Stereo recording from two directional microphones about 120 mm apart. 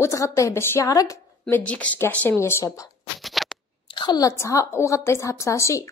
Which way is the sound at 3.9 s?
40° left (ahead or behind).